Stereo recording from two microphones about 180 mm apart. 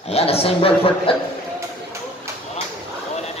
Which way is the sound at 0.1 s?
35° left (ahead or behind).